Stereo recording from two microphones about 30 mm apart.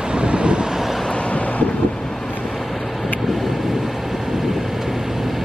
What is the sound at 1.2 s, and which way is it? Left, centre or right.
Wind noise, left.